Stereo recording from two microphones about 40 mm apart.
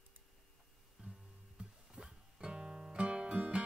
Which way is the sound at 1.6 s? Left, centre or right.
Right.